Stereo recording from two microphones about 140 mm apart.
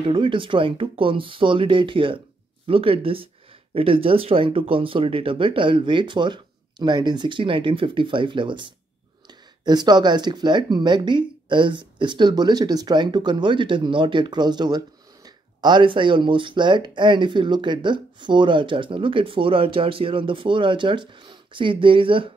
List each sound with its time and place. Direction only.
0.1 s speech: 35° right (ahead or behind)